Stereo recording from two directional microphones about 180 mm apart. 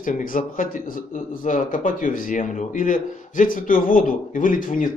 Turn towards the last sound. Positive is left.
turn(degrees=50)  # may be behind; listen again after turning